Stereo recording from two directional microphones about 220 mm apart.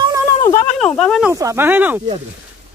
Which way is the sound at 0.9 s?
Centre (ahead or behind).